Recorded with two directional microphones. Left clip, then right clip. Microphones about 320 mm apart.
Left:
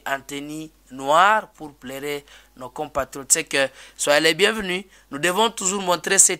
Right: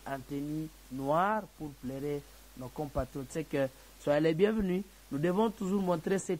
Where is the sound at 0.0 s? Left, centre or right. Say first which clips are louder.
Left 11 dB; centre.